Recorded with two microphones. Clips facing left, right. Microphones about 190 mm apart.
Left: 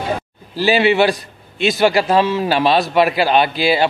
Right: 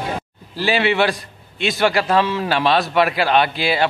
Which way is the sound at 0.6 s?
35° left (ahead or behind).